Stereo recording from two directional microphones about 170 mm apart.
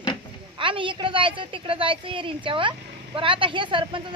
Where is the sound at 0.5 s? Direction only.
30° right (ahead or behind).